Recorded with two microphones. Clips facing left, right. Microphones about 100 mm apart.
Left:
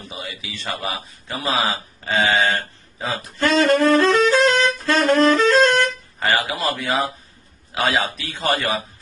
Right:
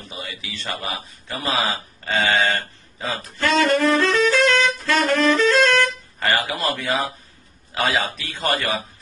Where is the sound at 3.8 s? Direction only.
50° left (ahead or behind).